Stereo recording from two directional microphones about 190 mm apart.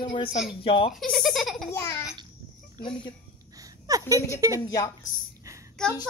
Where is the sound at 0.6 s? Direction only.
30° left (ahead or behind).